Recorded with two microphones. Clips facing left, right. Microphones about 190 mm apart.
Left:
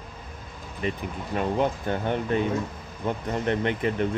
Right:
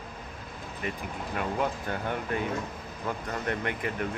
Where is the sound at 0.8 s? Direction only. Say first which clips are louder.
Left 5 dB; 25° left (ahead or behind).